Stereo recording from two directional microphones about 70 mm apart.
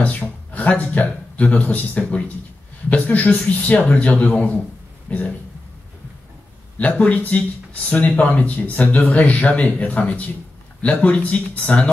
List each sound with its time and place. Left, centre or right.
0.0 s a man's voice: left
6.8 s speech: left